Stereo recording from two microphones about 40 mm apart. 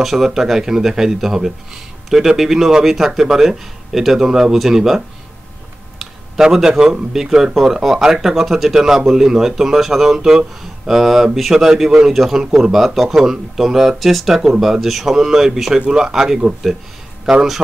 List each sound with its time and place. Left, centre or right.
0.0 s speech: centre
5.9 s a sound: centre
7.1 s speech: centre
12.4 s speech: centre
12.7 s speech: centre